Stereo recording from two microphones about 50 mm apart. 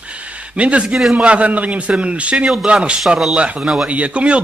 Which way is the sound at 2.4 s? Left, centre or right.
Centre.